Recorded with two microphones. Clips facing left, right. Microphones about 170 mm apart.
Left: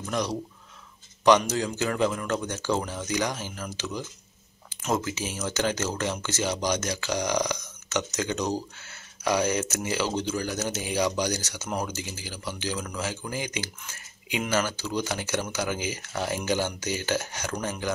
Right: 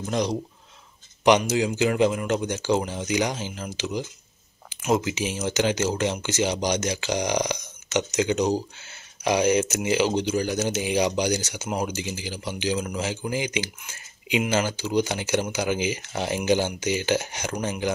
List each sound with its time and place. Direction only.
0.1 s speech: 20° right (ahead or behind)
1.4 s speech: 15° right (ahead or behind)